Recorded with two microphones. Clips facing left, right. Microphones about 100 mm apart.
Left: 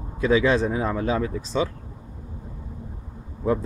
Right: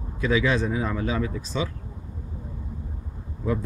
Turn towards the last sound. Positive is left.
turn(degrees=30)  # may be behind; listen again after turning